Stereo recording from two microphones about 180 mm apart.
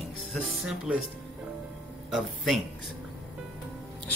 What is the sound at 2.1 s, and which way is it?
Speech, centre (ahead or behind).